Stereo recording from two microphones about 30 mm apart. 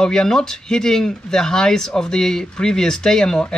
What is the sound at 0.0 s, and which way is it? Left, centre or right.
Speech, centre.